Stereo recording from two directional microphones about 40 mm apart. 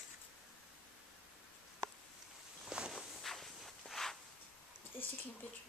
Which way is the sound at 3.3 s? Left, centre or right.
Centre.